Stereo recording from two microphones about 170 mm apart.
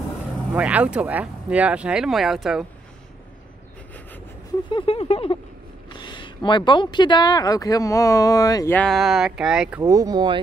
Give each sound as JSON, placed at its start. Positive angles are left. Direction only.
{"t": 0.5, "sound": "speech", "side_deg": -10}
{"t": 4.6, "sound": "a sound", "side_deg": 30}
{"t": 5.9, "sound": "speech", "side_deg": 25}
{"t": 8.7, "sound": "speech", "side_deg": 0}
{"t": 9.8, "sound": "speech", "side_deg": -20}